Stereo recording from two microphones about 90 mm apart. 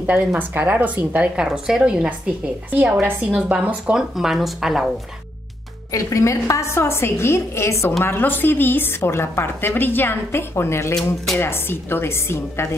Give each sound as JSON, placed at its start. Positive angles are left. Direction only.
{"t": 0.0, "sound": "a woman's voice", "side_deg": -15}
{"t": 5.9, "sound": "a woman's voice", "side_deg": 35}